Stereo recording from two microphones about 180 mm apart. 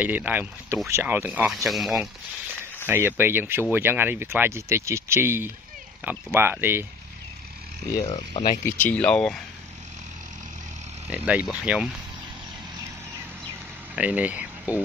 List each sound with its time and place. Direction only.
0.0 s speech: 10° right (ahead or behind)
2.9 s speech: 10° right (ahead or behind)
8.0 s speech: 35° left (ahead or behind)
8.6 s speech: 10° left (ahead or behind)
11.1 s speech: 10° right (ahead or behind)
13.9 s speech: 10° right (ahead or behind)